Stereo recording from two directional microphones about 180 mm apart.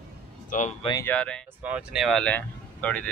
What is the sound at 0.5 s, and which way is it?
Speech, 45° left (ahead or behind).